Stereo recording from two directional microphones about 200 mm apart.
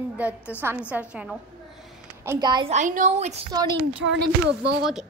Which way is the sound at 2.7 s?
40° right (ahead or behind).